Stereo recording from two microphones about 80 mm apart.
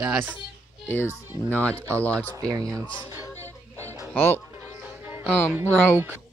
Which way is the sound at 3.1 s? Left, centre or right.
Right.